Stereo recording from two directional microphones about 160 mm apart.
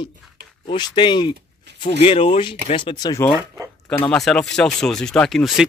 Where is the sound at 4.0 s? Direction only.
5° left (ahead or behind).